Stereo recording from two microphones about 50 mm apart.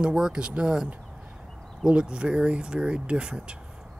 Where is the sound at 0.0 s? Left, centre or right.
Centre.